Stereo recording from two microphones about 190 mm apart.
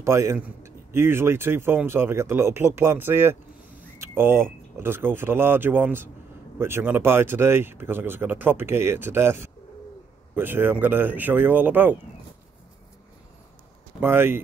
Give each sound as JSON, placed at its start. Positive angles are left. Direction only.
{"t": 0.0, "sound": "a man's voice", "side_deg": -15}
{"t": 13.9, "sound": "speech", "side_deg": -10}